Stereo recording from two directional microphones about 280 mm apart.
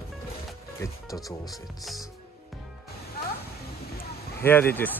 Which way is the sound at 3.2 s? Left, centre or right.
Left.